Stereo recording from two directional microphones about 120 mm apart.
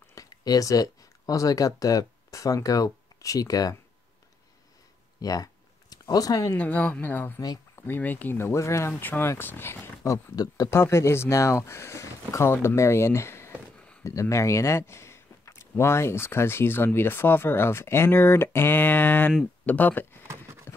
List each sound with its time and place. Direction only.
0.1 s speech: 30° left (ahead or behind)
5.2 s a sound: 30° left (ahead or behind)
6.5 s speech: 15° left (ahead or behind)
7.3 s speech: 30° left (ahead or behind)
7.8 s speech: 15° left (ahead or behind)
14.0 s a sound: 25° left (ahead or behind)
15.8 s speech: 20° left (ahead or behind)
20.7 s clip-clop: 20° left (ahead or behind)